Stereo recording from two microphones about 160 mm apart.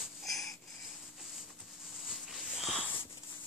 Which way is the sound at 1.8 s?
Centre (ahead or behind).